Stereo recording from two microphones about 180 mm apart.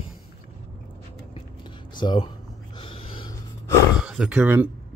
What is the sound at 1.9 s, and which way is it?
Speech, 25° left (ahead or behind).